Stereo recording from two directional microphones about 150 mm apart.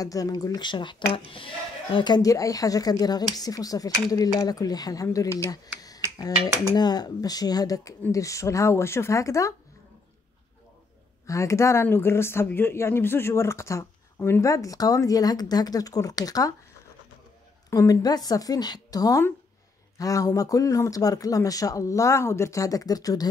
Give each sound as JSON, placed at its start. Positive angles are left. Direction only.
{"t": 0.0, "sound": "speech", "side_deg": 25}
{"t": 11.2, "sound": "speech", "side_deg": 20}
{"t": 17.6, "sound": "speech", "side_deg": 20}